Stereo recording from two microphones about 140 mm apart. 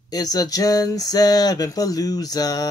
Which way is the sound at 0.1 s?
25° left (ahead or behind).